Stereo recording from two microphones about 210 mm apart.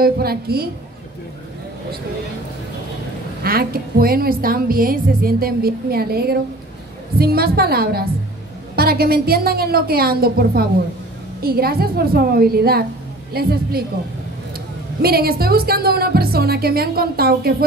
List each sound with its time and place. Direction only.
0.0 s a woman's voice: 45° right (ahead or behind)
3.4 s a woman's voice: 45° right (ahead or behind)
15.0 s a woman's voice: 45° right (ahead or behind)